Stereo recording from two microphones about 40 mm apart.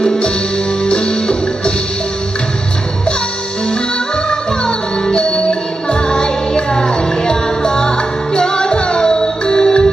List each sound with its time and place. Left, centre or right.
0.0 s music: centre
4.3 s music: centre